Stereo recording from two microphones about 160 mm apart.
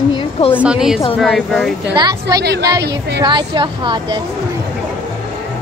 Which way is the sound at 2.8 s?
90° right.